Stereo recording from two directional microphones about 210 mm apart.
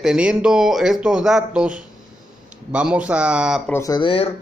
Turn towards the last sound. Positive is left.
turn(degrees=25)  # may be behind; listen again after turning